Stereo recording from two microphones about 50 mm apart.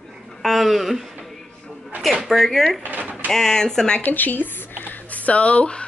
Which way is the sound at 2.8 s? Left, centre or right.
Right.